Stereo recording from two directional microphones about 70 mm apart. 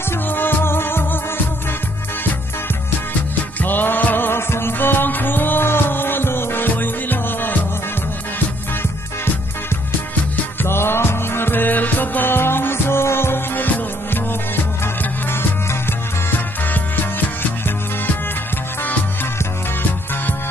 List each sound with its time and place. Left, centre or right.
0.3 s music: left
3.6 s music: left
10.6 s music: left
16.3 s music: left